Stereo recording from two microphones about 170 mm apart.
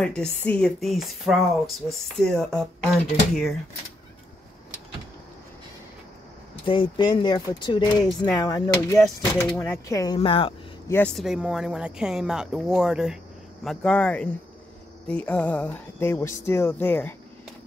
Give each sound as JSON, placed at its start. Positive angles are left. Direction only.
{"t": 0.0, "sound": "speech", "side_deg": 5}
{"t": 6.6, "sound": "speech", "side_deg": 30}
{"t": 11.1, "sound": "speech", "side_deg": -5}
{"t": 13.7, "sound": "speech", "side_deg": 10}